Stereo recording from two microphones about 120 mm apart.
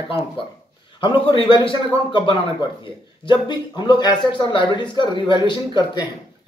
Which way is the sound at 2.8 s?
40° left (ahead or behind).